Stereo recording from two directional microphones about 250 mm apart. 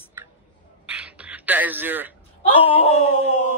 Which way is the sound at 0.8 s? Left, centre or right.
Centre.